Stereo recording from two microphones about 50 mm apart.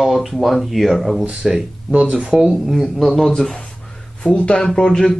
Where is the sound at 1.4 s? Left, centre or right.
Centre.